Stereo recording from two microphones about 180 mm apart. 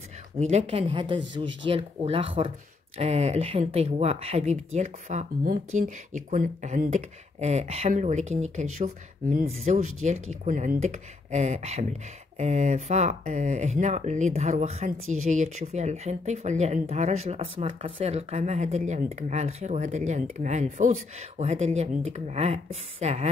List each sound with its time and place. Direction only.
0.4 s speech: 40° right (ahead or behind)